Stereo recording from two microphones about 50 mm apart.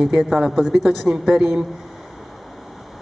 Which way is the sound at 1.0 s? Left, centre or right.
Centre.